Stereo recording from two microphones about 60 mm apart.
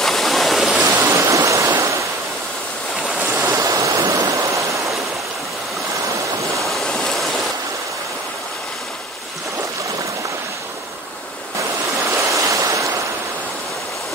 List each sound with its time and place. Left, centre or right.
0.0 s waterfall: centre
1.0 s waterfall: right
3.4 s waterfall: right
6.6 s waves: centre
12.0 s waves: right